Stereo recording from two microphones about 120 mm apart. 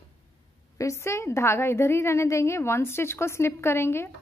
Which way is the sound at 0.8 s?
25° left (ahead or behind).